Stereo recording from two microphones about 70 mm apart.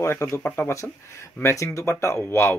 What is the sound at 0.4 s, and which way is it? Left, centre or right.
Speech, left.